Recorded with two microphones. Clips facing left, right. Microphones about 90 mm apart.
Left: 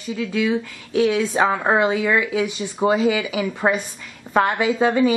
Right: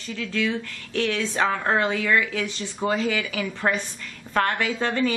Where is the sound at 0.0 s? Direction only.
10° left (ahead or behind).